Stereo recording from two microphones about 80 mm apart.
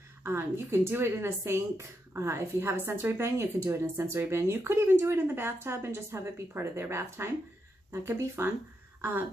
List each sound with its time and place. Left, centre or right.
0.2 s speech: right